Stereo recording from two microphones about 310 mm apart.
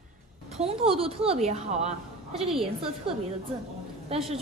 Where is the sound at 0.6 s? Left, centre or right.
Centre.